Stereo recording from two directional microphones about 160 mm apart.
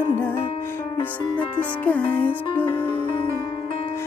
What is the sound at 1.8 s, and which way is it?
Speech, 10° left (ahead or behind).